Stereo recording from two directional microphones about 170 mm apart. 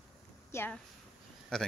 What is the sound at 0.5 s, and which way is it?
A woman's voice, 10° left (ahead or behind).